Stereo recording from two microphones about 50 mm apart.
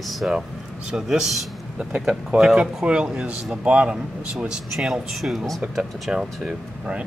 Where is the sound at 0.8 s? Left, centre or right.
Centre.